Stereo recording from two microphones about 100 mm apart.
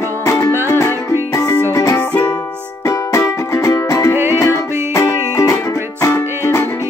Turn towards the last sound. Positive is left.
turn(degrees=30)  # may be behind; listen again after turning